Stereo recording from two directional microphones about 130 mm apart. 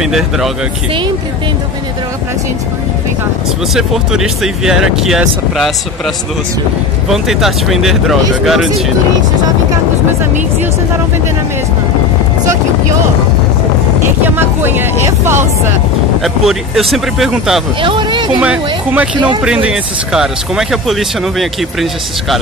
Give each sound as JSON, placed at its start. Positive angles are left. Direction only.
{"t": 0.0, "sound": "speech", "side_deg": -5}
{"t": 3.7, "sound": "speech", "side_deg": -5}
{"t": 7.1, "sound": "speech", "side_deg": 0}
{"t": 14.3, "sound": "speech", "side_deg": -15}
{"t": 16.4, "sound": "speech", "side_deg": 0}
{"t": 17.8, "sound": "speech", "side_deg": -40}
{"t": 18.4, "sound": "speech", "side_deg": -10}
{"t": 19.1, "sound": "speech", "side_deg": -35}
{"t": 19.4, "sound": "speech", "side_deg": -5}